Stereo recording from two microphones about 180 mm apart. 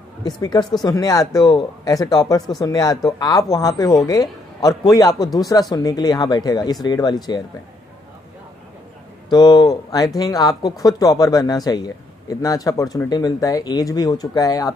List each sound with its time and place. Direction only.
0.2 s a man's voice: 20° left (ahead or behind)
9.3 s a man's voice: 25° left (ahead or behind)